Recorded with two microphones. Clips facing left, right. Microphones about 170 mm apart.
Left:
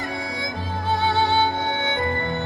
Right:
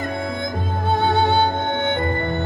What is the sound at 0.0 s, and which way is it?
Music, 55° right (ahead or behind).